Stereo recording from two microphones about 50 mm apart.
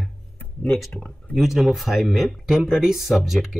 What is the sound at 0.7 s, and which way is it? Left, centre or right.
Speech, centre.